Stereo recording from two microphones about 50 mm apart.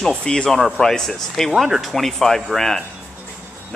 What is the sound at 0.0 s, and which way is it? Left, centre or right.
Speech, centre.